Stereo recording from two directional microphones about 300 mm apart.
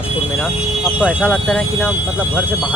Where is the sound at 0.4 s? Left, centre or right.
Centre.